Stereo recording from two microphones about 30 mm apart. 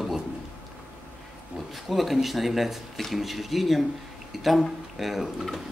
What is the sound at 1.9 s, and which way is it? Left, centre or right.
Speech, centre.